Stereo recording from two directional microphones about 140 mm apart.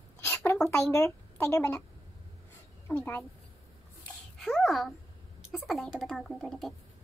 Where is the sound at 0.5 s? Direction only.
5° left (ahead or behind).